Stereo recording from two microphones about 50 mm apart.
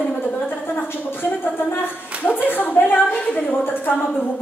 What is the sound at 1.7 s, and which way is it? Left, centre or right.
A woman's voice, left.